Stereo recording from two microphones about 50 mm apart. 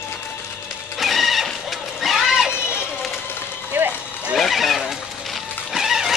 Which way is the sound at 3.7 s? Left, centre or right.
Right.